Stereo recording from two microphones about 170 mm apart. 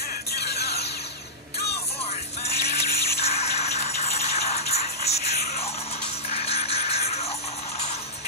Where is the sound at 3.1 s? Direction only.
40° left (ahead or behind).